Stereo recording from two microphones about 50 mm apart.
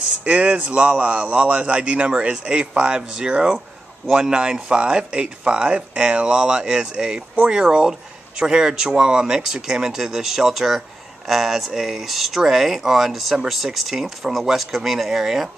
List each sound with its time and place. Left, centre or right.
0.2 s speech: right; by 15.5 s centre